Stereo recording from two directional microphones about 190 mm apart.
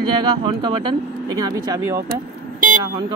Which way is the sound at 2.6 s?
50° right (ahead or behind).